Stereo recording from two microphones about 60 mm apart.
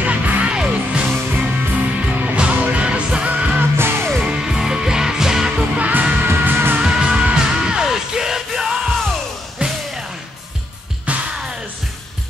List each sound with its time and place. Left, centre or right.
0.0 s music: right
2.1 s music: right
3.7 s music: right
4.2 s music: centre
5.8 s music: right
6.2 s music: right
6.8 s music: centre
9.6 s music: right
11.1 s music: right